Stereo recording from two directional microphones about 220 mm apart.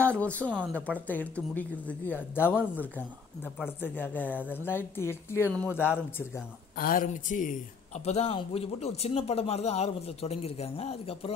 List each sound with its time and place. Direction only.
0.0 s a woman's voice: 5° left (ahead or behind)
3.5 s a woman's voice: 10° left (ahead or behind)
6.8 s a man's voice: 40° left (ahead or behind)